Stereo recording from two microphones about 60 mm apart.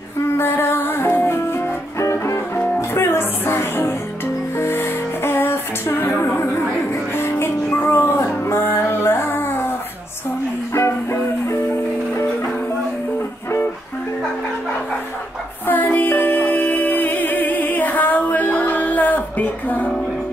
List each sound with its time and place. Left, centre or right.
0.4 s music: left
2.0 s music: left
15.6 s music: left